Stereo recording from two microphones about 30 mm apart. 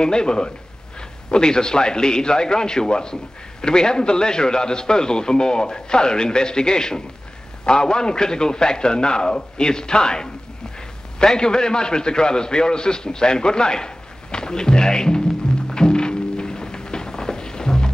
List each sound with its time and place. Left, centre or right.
0.0 s a man's voice: left
11.3 s a man's voice: left
15.7 s music: left